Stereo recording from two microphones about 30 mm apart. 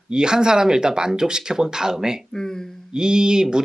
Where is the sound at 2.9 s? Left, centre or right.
Right.